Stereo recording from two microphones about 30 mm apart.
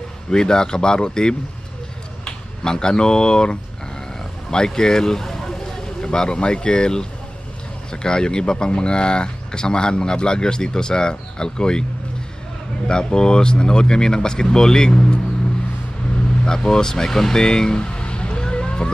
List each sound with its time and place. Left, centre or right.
0.3 s speech: left
4.2 s vehicle: left
5.9 s speech: left
12.8 s speech: left
16.4 s speech: centre